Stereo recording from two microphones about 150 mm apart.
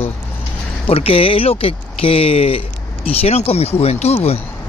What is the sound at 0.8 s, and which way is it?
Speech, 40° left (ahead or behind).